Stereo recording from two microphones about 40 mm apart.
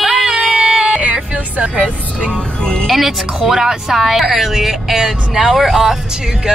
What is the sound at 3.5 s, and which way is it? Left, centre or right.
Speech, centre.